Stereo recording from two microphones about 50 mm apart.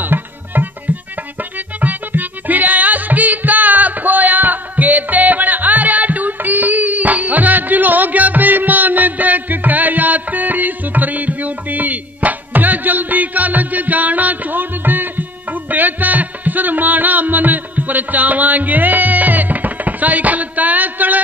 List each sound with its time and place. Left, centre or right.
0.0 s music: right